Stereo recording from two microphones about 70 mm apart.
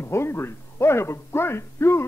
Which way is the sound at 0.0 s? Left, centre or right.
Left.